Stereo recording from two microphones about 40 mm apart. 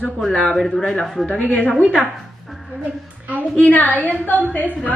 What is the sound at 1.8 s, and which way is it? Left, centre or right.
Speech, right.